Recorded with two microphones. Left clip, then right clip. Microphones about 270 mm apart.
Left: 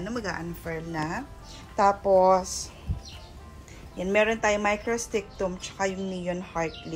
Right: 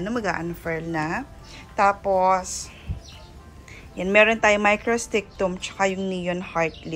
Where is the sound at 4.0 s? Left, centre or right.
Centre.